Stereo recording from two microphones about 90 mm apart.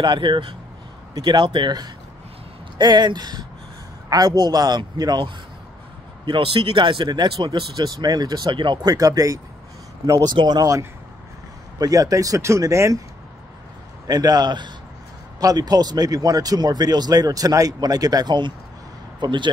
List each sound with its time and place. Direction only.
0.0 s speech: 60° right (ahead or behind)
6.2 s speech: 80° right; by 8.9 s 60° right (ahead or behind)
8.9 s speech: 40° right (ahead or behind)
10.2 s speech: 50° right (ahead or behind)
11.8 s speech: 40° right (ahead or behind)
14.0 s speech: 45° right (ahead or behind)